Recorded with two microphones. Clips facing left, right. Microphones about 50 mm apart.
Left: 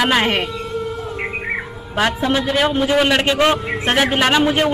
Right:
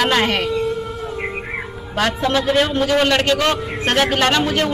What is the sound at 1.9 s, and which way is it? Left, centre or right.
A man's voice, centre.